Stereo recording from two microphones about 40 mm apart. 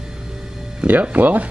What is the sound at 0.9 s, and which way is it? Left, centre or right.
Speech, right.